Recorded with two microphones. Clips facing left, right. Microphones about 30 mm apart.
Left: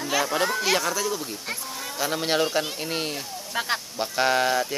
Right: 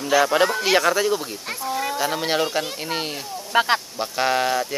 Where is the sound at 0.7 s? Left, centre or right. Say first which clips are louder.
Right 6 dB; right.